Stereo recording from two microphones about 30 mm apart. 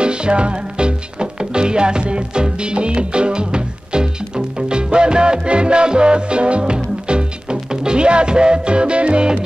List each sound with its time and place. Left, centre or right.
0.0 s music: right